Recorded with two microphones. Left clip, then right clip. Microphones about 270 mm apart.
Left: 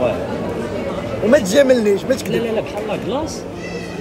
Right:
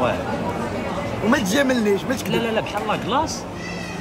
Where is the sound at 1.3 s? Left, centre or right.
Centre.